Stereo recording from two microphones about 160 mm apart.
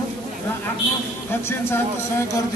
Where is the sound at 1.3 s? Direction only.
15° left (ahead or behind).